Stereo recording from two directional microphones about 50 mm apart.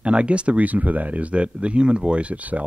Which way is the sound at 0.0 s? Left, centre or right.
Right.